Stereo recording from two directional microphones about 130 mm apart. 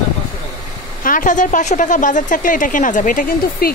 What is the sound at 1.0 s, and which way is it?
A woman's voice, 90° left.